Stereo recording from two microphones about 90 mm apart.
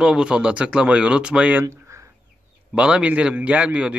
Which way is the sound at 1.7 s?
30° right (ahead or behind).